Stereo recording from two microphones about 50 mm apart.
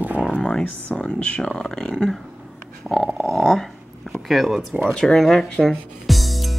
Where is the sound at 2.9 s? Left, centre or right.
Centre.